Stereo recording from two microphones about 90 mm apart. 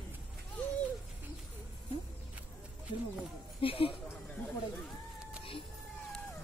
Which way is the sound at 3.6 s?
90° left.